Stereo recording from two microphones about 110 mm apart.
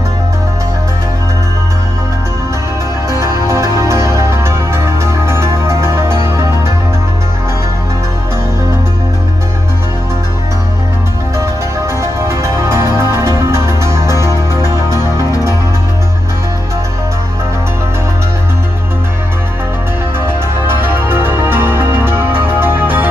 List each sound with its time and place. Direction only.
3.1 s music: 25° right (ahead or behind)
11.3 s music: 25° right (ahead or behind)
20.6 s music: 20° right (ahead or behind)